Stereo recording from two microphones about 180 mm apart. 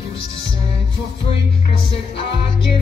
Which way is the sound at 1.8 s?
30° left (ahead or behind).